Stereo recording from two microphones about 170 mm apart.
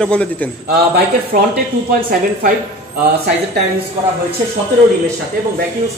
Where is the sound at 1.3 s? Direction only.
50° right (ahead or behind).